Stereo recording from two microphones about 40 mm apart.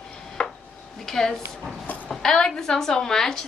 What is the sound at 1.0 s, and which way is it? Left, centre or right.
A woman's voice, centre.